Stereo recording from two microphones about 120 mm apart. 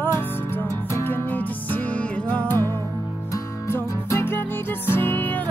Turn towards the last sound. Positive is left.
turn(degrees=15)  # may be behind; listen again after turning